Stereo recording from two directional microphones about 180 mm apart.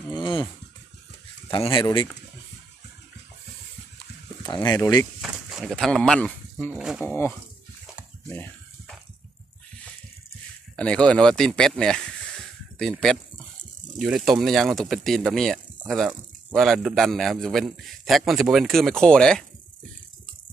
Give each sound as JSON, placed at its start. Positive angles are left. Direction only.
{"t": 0.1, "sound": "a sound", "side_deg": 25}
{"t": 1.5, "sound": "speech", "side_deg": 25}
{"t": 4.6, "sound": "speech", "side_deg": 15}
{"t": 5.2, "sound": "a sound", "side_deg": 0}
{"t": 6.8, "sound": "speech", "side_deg": -5}
{"t": 7.1, "sound": "speech", "side_deg": 10}
{"t": 8.3, "sound": "a sound", "side_deg": 10}
{"t": 10.8, "sound": "speech", "side_deg": 5}
{"t": 13.9, "sound": "speech", "side_deg": 0}